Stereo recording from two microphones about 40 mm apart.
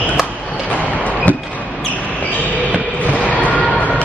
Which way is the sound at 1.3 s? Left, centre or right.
Left.